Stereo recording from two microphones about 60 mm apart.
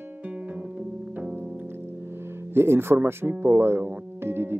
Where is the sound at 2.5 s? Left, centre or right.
Right.